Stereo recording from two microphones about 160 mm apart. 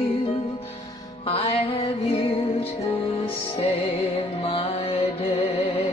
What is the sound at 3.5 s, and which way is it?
Music, 35° left (ahead or behind).